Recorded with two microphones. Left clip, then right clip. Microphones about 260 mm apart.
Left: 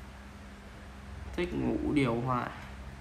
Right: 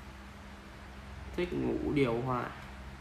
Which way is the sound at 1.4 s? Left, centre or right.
Left.